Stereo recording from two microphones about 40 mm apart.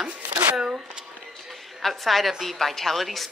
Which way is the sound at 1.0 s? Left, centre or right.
Centre.